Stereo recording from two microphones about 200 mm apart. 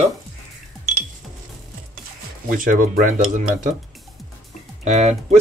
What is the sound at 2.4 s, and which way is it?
Speech, 45° right (ahead or behind).